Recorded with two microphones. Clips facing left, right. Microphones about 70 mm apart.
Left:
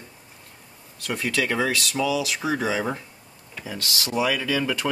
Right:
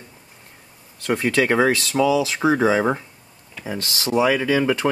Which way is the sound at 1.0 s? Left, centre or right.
Right.